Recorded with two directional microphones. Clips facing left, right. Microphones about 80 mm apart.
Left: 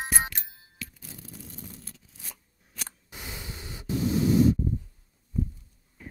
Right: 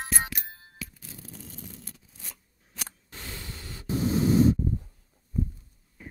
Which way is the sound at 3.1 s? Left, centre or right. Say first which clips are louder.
Left 2 dB; centre.